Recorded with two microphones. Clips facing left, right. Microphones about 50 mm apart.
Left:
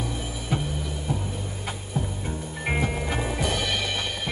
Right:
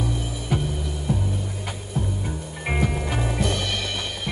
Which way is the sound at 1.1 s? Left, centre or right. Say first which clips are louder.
Right 5 dB; centre.